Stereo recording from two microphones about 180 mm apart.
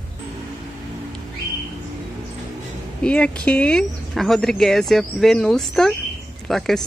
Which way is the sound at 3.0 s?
5° left (ahead or behind).